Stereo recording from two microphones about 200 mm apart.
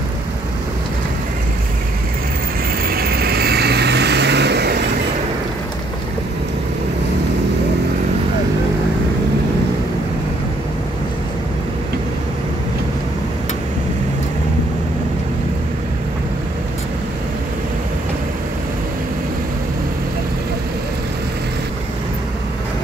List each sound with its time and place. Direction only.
2.9 s vehicle: 50° right (ahead or behind)